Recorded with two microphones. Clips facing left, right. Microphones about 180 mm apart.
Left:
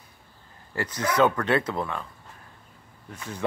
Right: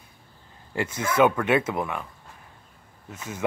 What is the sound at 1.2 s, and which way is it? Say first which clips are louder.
Speech: right 2 dB; 10° right (ahead or behind).